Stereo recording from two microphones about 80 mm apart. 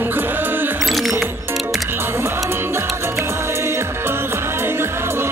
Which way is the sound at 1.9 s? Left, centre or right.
Right.